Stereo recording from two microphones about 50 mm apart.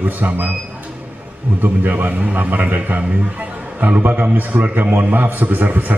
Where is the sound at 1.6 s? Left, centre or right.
Right.